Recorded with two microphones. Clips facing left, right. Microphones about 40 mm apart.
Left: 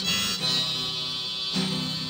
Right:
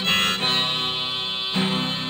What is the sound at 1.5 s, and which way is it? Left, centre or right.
Music, right.